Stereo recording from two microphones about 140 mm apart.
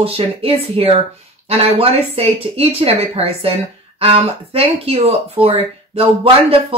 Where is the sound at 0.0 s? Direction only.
45° right (ahead or behind).